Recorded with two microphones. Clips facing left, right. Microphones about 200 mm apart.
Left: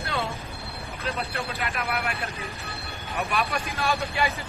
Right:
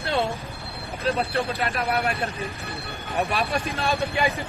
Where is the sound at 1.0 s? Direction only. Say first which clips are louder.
Right 7 dB; 30° right (ahead or behind).